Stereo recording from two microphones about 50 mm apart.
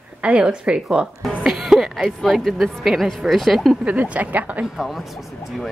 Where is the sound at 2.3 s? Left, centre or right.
Centre.